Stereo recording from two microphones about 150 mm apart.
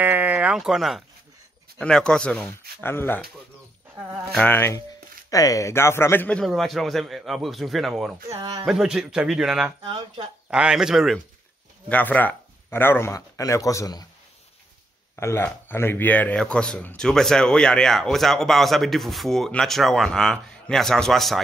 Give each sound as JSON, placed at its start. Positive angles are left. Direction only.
{"t": 0.0, "sound": "sheep", "side_deg": -10}
{"t": 1.8, "sound": "speech", "side_deg": 5}
{"t": 4.0, "sound": "speech", "side_deg": -10}
{"t": 4.4, "sound": "speech", "side_deg": 15}
{"t": 9.8, "sound": "speech", "side_deg": -45}
{"t": 10.5, "sound": "speech", "side_deg": -5}
{"t": 11.9, "sound": "speech", "side_deg": 10}
{"t": 15.1, "sound": "speech", "side_deg": 15}